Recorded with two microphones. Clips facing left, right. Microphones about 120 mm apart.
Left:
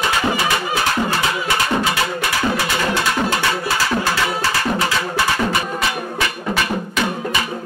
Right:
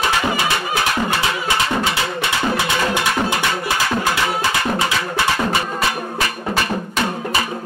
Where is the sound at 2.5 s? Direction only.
20° right (ahead or behind).